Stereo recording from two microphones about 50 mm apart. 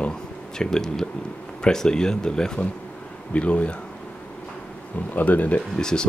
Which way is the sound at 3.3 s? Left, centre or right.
Left.